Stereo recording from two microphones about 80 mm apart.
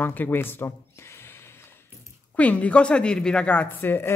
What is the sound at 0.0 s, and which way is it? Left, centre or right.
Speech, left.